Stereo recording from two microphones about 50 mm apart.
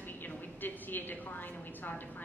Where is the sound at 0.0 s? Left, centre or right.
Left.